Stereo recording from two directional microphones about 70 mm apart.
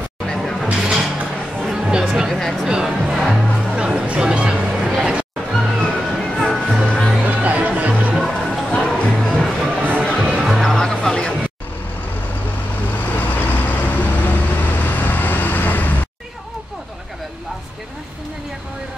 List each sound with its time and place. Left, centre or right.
0.3 s a sound: centre
0.7 s music: centre
2.1 s a sound: centre
2.6 s music: centre
3.7 s a sound: centre
5.5 s music: centre
7.2 s music: right
8.1 s music: centre
10.3 s music: centre
10.6 s music: centre
13.1 s vehicle: left